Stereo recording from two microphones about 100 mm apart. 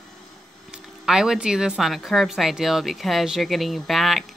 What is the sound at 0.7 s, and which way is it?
A woman's voice, 5° right (ahead or behind).